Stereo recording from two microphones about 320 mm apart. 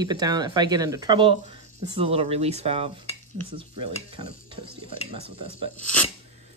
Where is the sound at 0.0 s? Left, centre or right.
Centre.